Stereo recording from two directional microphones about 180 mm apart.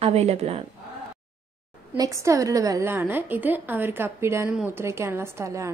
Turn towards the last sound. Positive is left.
turn(degrees=-15)  # may be behind; listen again after turning